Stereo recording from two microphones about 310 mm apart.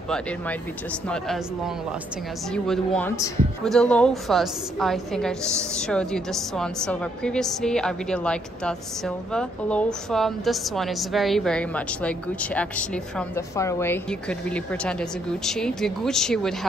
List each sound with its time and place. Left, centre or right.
1.0 s a woman's voice: centre
2.5 s a woman's voice: centre